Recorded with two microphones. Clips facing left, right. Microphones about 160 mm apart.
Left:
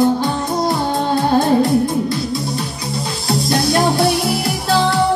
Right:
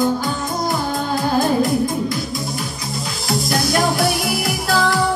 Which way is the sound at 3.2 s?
30° left (ahead or behind).